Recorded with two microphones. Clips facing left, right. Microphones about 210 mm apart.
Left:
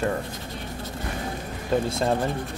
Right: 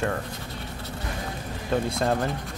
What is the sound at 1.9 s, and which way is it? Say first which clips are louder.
Speech: left 1 dB; centre (ahead or behind).